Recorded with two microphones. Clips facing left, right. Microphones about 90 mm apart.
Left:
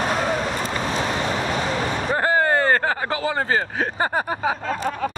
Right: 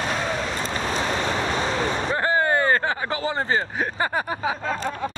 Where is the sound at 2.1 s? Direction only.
40° left (ahead or behind).